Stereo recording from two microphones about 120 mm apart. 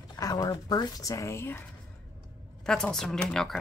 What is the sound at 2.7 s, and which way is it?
Speech, 5° left (ahead or behind).